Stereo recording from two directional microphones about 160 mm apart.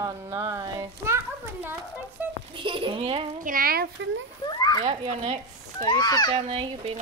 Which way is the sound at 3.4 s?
60° right (ahead or behind).